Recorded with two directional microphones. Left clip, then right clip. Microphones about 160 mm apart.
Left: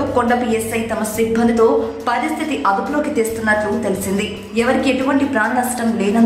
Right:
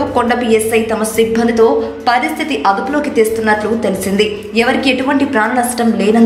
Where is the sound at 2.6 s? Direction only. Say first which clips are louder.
Right 3 dB; 15° right (ahead or behind).